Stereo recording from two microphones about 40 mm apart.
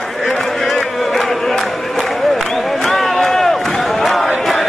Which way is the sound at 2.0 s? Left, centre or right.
Centre.